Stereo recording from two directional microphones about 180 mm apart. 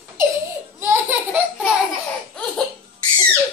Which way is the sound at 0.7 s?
10° right (ahead or behind).